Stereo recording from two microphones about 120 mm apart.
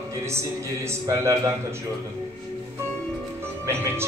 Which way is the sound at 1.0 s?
25° right (ahead or behind).